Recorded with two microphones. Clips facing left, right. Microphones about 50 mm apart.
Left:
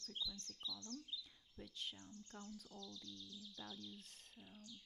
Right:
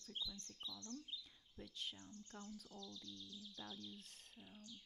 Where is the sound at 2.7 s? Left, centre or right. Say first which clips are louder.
Even; right.